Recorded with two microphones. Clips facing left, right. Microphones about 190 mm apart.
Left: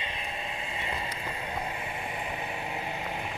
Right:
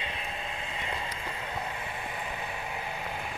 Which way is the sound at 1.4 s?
15° left (ahead or behind).